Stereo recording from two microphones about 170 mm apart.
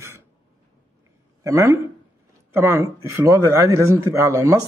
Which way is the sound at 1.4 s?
15° right (ahead or behind).